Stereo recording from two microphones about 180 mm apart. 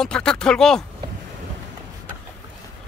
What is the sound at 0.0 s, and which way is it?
Speech, 5° left (ahead or behind).